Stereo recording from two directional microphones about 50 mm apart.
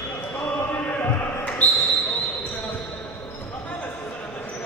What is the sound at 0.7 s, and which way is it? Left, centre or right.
Chant, left.